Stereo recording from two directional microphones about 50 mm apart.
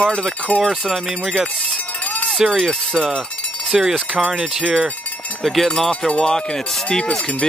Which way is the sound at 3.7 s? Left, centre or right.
Centre.